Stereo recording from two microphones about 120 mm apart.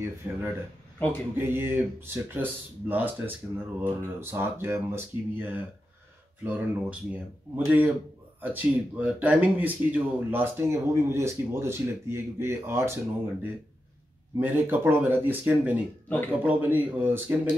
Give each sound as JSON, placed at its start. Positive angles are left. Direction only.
{"t": 0.0, "sound": "speech", "side_deg": -20}